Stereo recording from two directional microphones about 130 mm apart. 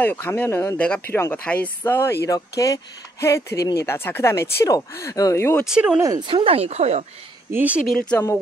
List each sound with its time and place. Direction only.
0.0 s speech: 15° left (ahead or behind)
5.7 s speech: 5° right (ahead or behind)
5.9 s speech: 25° right (ahead or behind)
6.2 s speech: 45° right (ahead or behind)
7.5 s speech: 10° right (ahead or behind)
7.8 s speech: 5° left (ahead or behind)